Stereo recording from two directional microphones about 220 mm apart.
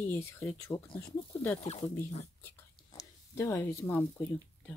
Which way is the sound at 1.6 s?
30° left (ahead or behind).